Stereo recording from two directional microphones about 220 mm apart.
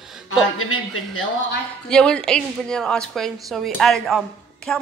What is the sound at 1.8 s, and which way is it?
A woman's voice, 5° left (ahead or behind).